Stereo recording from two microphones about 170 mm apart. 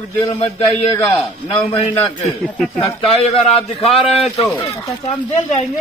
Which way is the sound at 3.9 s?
Centre (ahead or behind).